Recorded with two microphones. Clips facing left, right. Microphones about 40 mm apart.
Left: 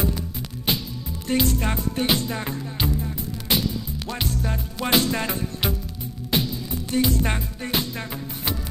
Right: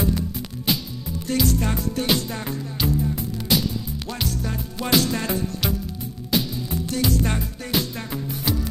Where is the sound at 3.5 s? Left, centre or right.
Left.